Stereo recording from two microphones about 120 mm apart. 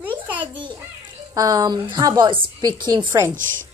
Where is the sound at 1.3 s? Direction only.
30° right (ahead or behind).